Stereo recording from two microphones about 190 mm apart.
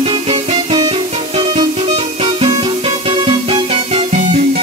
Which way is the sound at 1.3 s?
30° right (ahead or behind).